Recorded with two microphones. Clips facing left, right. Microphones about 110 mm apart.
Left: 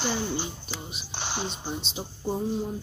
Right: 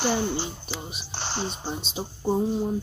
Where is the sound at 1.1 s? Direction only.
15° left (ahead or behind).